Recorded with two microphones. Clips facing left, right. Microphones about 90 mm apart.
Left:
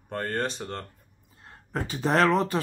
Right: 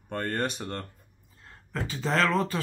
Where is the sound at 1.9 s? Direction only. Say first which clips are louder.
Left 4 dB; 20° left (ahead or behind).